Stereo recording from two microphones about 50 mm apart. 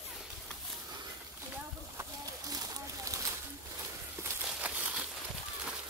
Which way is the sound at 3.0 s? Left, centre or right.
Right.